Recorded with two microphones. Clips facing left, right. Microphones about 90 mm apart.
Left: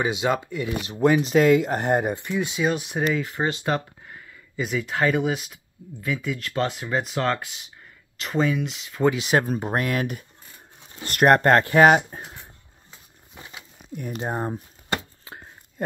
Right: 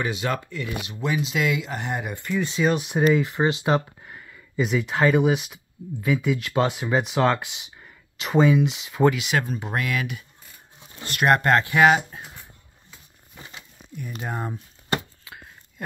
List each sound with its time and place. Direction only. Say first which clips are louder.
0.0 s speech: left 3 dB; 20° left (ahead or behind)
0.8 s speech: left 9 dB; 40° left (ahead or behind)
2.1 s speech: even; 20° left (ahead or behind)
2.4 s speech: right 3 dB; 5° left (ahead or behind)
9.1 s speech: left 4 dB; 35° left (ahead or behind)
14.2 s speech: left 3 dB; 30° left (ahead or behind)
15.3 s a sound: left 2 dB; 35° left (ahead or behind)